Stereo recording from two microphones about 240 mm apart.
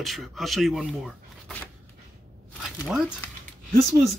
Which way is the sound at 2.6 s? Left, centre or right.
Centre.